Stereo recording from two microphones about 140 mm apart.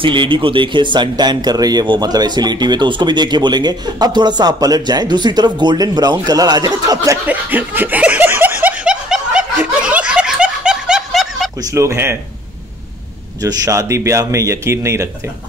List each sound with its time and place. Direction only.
0.0 s speech: 35° right (ahead or behind)
7.2 s snicker: 15° right (ahead or behind)
11.6 s speech: 20° right (ahead or behind)
13.4 s speech: 25° right (ahead or behind)